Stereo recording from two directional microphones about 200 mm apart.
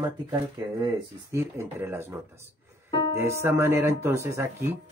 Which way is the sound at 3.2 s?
10° right (ahead or behind).